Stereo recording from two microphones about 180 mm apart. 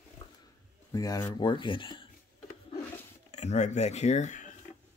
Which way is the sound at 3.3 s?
40° left (ahead or behind).